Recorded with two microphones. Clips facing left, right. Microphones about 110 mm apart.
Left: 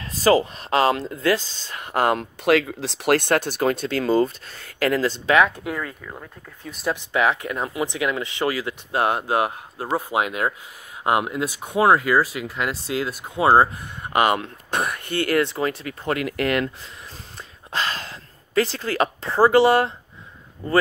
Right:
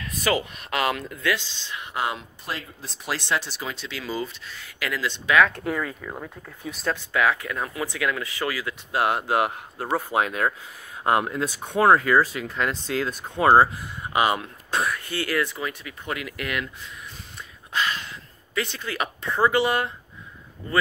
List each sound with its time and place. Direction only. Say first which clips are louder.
0.0 s speech: left 7 dB; 35° left (ahead or behind); by 2.2 s 50° left (ahead or behind)
2.4 s speech: left 18 dB; 90° left
3.2 s speech: left 7 dB; 50° left (ahead or behind); by 5.4 s 35° left (ahead or behind)
5.6 s speech: right 1 dB; centre (ahead or behind)
6.9 s speech: left 2 dB; 20° left (ahead or behind)
15.0 s speech: left 5 dB; 55° left (ahead or behind)
15.4 s speech: left 6 dB; 35° left (ahead or behind)
17.7 s speech: even; 35° left (ahead or behind)